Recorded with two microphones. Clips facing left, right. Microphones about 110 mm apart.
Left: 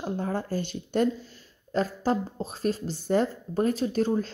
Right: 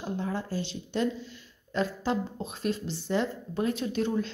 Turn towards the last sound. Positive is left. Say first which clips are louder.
# left 3 dB
turn(degrees=40)  # may be behind; listen again after turning